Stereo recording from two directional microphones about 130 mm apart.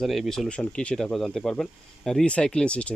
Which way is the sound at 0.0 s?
Centre (ahead or behind).